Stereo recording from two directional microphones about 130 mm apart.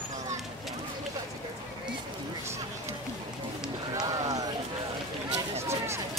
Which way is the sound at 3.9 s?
30° right (ahead or behind).